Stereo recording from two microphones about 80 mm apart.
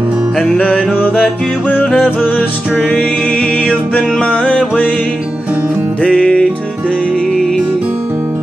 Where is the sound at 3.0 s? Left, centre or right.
Centre.